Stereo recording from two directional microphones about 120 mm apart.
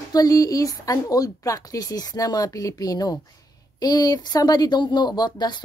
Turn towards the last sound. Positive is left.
turn(degrees=35)  # may be behind; listen again after turning